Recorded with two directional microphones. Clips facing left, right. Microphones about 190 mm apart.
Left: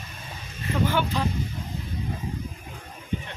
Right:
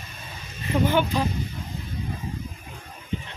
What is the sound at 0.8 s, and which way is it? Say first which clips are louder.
Speech: right 3 dB; 20° right (ahead or behind).